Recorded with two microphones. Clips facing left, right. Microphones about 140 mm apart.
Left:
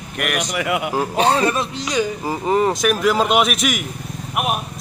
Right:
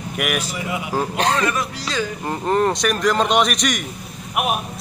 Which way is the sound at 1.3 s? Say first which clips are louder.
Left 3 dB; 30° left (ahead or behind).